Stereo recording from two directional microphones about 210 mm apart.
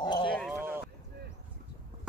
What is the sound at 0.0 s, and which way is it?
Clip-clop, 20° left (ahead or behind).